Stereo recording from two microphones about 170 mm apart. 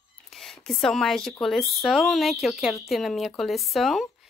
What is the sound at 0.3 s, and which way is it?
A woman's voice, centre (ahead or behind).